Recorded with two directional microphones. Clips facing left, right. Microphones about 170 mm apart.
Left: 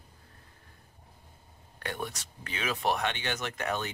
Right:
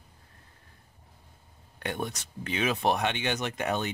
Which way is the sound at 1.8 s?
20° right (ahead or behind).